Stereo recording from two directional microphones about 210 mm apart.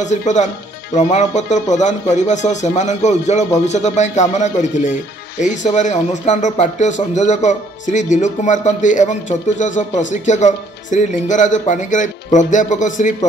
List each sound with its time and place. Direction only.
0.0 s a man's voice: 35° left (ahead or behind)